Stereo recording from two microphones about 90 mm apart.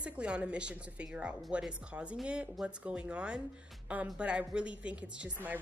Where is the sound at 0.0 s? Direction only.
15° right (ahead or behind).